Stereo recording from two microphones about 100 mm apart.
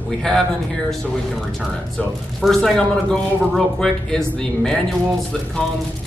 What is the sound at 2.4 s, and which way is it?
Speech, 5° left (ahead or behind).